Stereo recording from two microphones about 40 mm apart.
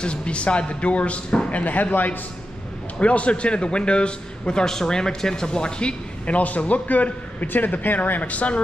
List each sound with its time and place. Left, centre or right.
0.0 s a man's voice: left
3.0 s a man's voice: left